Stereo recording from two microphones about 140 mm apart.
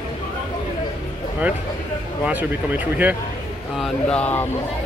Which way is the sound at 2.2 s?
10° right (ahead or behind).